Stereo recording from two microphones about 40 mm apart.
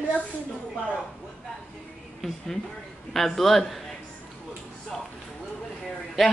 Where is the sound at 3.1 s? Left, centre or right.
Centre.